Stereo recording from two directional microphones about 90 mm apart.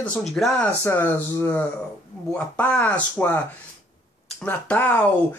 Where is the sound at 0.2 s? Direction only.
Centre (ahead or behind).